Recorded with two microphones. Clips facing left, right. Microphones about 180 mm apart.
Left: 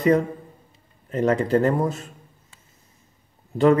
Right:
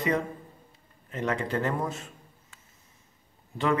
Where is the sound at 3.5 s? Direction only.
40° left (ahead or behind).